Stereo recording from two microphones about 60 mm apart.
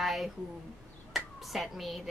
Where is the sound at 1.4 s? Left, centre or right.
Centre.